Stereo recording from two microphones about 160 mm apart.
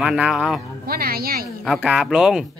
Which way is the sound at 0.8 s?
70° right (ahead or behind).